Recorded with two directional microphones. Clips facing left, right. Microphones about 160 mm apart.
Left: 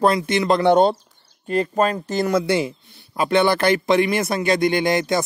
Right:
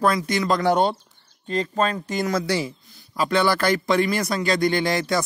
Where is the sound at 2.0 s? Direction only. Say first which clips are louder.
Left 4 dB; 30° left (ahead or behind).